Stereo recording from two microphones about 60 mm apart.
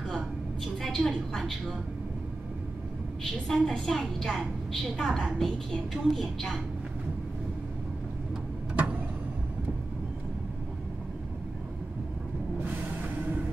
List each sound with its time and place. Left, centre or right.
0.8 s a woman's voice: centre
3.4 s a woman's voice: centre
8.7 s vehicle: right